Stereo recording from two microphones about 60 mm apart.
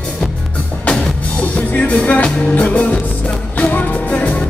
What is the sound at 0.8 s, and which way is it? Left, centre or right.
Music, centre.